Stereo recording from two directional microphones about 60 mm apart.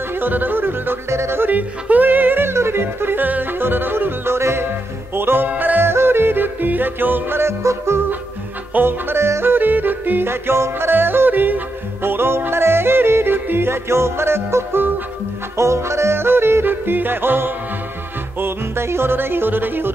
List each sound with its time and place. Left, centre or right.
0.1 s music: right
1.5 s yodeling: right
5.1 s music: right
5.5 s yodeling: right
15.5 s yodeling: right